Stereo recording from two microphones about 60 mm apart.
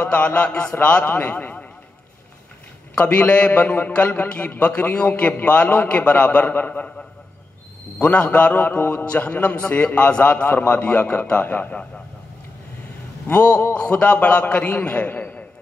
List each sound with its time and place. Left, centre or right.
0.0 s a man's voice: left
2.9 s a man's voice: left
8.0 s a man's voice: left
13.3 s a man's voice: left